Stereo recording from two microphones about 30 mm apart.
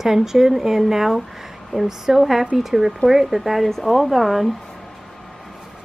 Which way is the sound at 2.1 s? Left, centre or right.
Centre.